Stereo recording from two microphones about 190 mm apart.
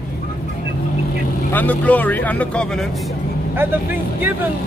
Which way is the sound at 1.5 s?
10° left (ahead or behind).